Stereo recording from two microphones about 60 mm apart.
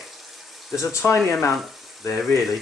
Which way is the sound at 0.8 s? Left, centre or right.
Left.